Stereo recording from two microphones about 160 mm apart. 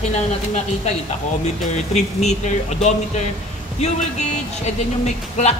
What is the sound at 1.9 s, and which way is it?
Speech, 45° left (ahead or behind).